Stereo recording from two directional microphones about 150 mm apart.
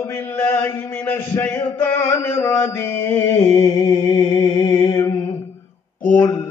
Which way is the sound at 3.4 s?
30° left (ahead or behind).